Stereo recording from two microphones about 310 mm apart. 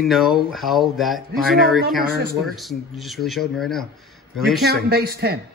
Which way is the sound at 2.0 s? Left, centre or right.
Right.